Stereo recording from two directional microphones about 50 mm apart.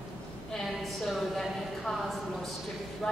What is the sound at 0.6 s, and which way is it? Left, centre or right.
A woman's voice, centre.